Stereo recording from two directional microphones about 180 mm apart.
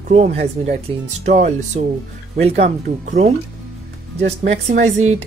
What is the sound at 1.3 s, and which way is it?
Speech, 40° right (ahead or behind).